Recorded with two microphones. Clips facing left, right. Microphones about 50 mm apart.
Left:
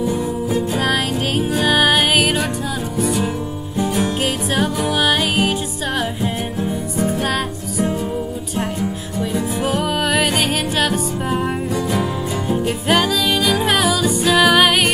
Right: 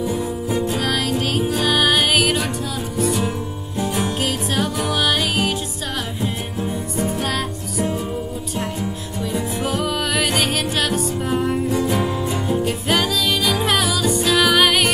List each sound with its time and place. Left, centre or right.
0.1 s music: centre
0.7 s music: centre
4.2 s music: centre
7.0 s music: centre
9.6 s music: centre
11.7 s music: centre
12.4 s music: centre